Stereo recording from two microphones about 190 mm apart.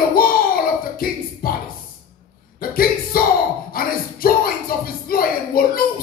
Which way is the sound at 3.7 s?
50° left (ahead or behind).